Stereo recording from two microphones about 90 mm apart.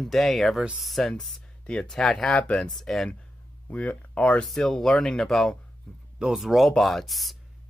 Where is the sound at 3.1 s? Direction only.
15° left (ahead or behind).